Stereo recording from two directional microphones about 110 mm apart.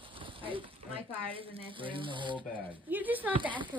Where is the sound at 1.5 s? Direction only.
50° right (ahead or behind).